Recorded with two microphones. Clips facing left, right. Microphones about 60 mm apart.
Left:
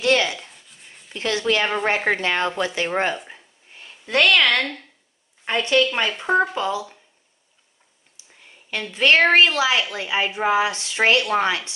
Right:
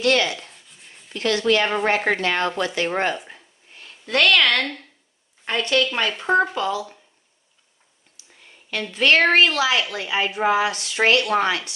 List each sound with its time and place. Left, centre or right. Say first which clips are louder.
0.0 s speech: even; left
0.4 s a sound: even; centre
1.1 s speech: right 2 dB; left
2.0 s speech: even; centre
2.2 s speech: even; centre
3.3 s a sound: left 1 dB; centre
5.4 s a woman's voice: left 2 dB; centre
6.5 s speech: even; centre
8.2 s a sound: even; left
8.9 s speech: left 1 dB; centre